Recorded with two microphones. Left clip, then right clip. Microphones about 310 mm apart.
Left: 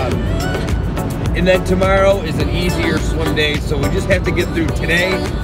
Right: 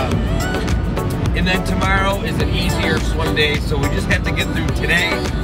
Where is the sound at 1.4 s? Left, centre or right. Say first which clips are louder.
Left 6 dB; centre.